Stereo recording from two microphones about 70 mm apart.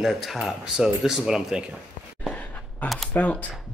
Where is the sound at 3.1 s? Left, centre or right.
Left.